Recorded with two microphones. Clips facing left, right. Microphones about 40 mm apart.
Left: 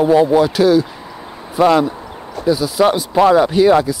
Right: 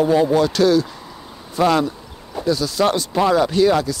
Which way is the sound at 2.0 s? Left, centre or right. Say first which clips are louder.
Left 8 dB; left.